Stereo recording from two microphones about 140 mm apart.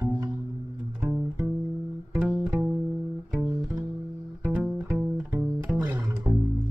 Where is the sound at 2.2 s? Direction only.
5° right (ahead or behind).